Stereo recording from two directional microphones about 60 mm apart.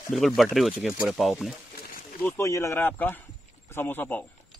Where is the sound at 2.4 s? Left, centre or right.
Left.